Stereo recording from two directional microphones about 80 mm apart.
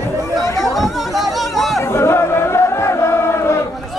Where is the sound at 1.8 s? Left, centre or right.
Left.